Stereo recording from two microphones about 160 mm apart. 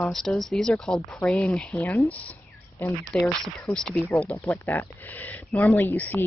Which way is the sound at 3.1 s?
Centre (ahead or behind).